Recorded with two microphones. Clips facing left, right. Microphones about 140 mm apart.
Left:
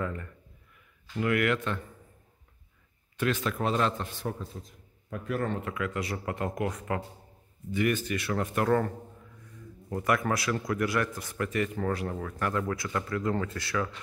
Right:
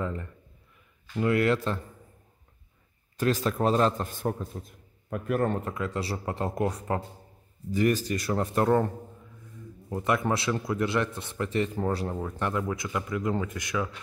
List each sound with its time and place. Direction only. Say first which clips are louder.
0.0 s a man's voice: right 1 dB; 25° right (ahead or behind)
3.2 s a man's voice: right 3 dB; 35° right (ahead or behind)
8.6 s speech: right 2 dB; 20° right (ahead or behind)